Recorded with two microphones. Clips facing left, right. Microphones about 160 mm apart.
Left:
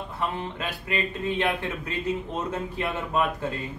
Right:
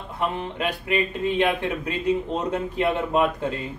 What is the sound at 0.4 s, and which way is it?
Speech, 20° right (ahead or behind).